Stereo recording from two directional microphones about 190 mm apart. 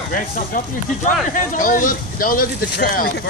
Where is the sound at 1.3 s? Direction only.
45° left (ahead or behind).